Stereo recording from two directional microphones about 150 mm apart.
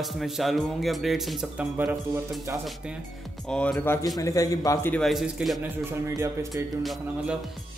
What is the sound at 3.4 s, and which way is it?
A man's voice, 5° left (ahead or behind).